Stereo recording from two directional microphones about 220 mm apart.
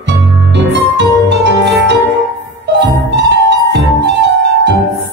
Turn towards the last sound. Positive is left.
turn(degrees=-50)  # may be behind; listen again after turning